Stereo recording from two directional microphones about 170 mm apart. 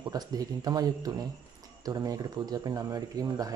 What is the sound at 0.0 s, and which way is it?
Speech, 20° right (ahead or behind).